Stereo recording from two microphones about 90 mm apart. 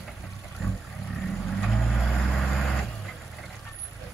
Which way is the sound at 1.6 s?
10° left (ahead or behind).